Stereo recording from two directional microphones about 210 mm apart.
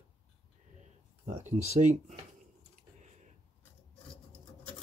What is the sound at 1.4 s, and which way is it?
Speech, 30° right (ahead or behind).